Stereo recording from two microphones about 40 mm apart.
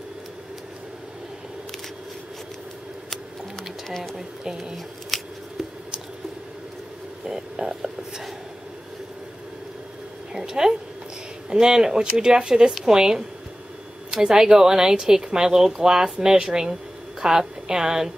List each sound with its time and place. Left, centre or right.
3.5 s bird: centre
4.5 s speech: centre
5.1 s scissors: centre
7.2 s speech: centre
10.3 s a woman's voice: centre